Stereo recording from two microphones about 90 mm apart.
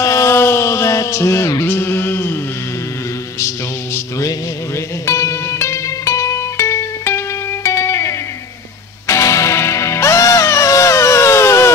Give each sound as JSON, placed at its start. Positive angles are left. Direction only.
{"t": 0.0, "sound": "music", "side_deg": 35}
{"t": 3.3, "sound": "music", "side_deg": 35}